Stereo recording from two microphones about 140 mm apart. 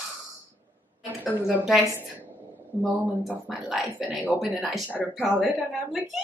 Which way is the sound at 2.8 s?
10° right (ahead or behind).